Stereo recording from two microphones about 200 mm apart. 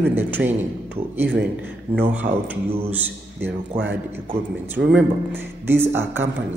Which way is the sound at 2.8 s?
10° right (ahead or behind).